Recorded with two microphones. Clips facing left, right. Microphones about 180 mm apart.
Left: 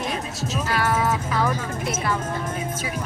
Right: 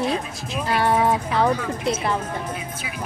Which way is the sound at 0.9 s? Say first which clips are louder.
Right 3 dB; 30° right (ahead or behind).